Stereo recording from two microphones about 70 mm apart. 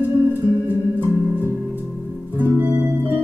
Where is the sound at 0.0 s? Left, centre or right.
Right.